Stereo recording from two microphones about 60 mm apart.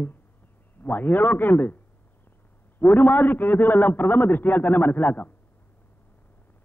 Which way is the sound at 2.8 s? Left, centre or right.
Left.